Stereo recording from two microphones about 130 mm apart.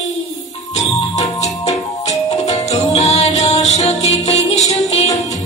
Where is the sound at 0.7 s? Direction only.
55° left (ahead or behind).